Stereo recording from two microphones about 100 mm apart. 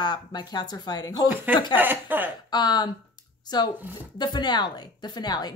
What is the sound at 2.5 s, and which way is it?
A woman's voice, 45° left (ahead or behind).